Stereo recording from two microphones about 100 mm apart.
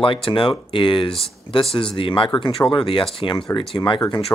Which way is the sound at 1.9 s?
60° left (ahead or behind).